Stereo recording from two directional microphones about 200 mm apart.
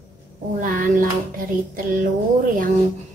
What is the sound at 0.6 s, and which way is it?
Speech, 45° right (ahead or behind).